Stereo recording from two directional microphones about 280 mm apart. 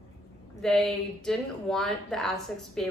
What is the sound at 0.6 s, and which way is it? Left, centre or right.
A woman's voice, centre.